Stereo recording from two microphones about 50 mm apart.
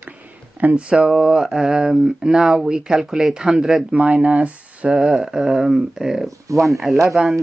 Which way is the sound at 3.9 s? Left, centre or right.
Right.